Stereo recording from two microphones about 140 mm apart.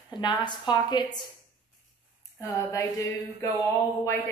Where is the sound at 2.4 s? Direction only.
25° left (ahead or behind).